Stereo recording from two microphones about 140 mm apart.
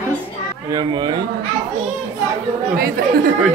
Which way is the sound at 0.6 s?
30° right (ahead or behind).